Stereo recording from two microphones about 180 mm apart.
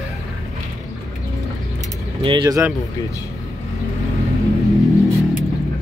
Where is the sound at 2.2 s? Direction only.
25° right (ahead or behind).